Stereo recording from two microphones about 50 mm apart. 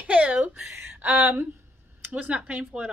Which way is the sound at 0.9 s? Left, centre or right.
Right.